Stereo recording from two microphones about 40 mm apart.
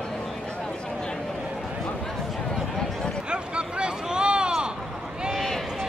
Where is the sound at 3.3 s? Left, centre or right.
Right.